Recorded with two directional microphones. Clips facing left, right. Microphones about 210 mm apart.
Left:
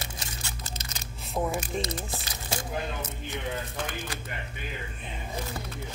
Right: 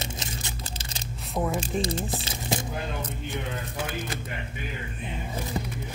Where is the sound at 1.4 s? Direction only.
Centre (ahead or behind).